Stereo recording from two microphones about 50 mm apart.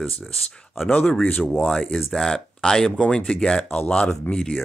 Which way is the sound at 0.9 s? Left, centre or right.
Left.